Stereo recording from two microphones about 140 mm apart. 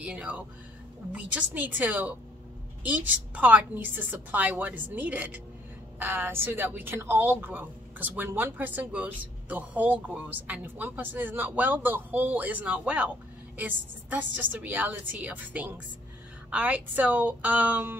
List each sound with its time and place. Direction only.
0.0 s a woman's voice: 10° right (ahead or behind)